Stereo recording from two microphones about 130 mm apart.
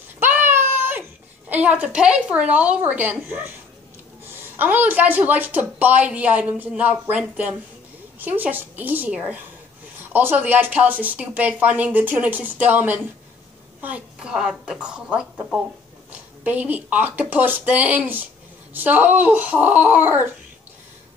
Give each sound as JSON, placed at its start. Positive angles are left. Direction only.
{"t": 0.2, "sound": "a sound", "side_deg": -15}
{"t": 1.5, "sound": "a woman's voice", "side_deg": -10}
{"t": 4.6, "sound": "a woman's voice", "side_deg": -15}